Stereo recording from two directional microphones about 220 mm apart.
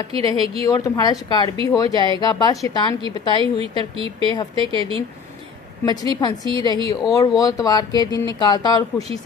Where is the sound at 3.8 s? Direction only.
25° right (ahead or behind).